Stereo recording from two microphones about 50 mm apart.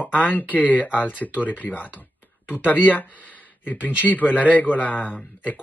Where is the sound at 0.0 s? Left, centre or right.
Left.